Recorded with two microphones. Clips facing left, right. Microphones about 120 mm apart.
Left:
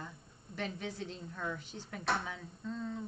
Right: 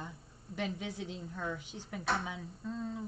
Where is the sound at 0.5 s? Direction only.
15° right (ahead or behind).